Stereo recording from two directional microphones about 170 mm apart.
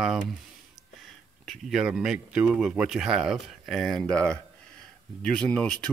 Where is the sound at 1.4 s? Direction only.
Centre (ahead or behind).